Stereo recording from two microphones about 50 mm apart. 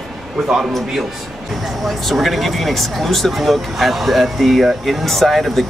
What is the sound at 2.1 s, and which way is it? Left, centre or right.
Speech, centre.